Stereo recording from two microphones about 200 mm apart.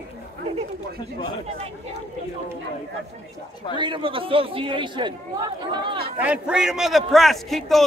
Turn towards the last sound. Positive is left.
turn(degrees=0)  # may be behind; listen again after turning